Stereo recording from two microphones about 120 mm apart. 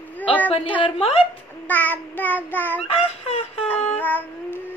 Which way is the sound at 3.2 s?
55° left (ahead or behind).